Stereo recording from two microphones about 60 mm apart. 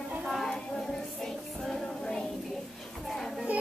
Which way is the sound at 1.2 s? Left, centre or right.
Centre.